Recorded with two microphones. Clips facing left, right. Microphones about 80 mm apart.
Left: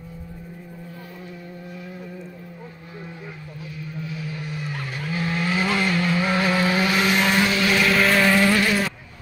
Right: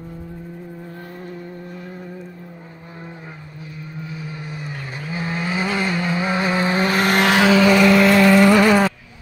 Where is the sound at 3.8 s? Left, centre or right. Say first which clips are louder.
Even; right.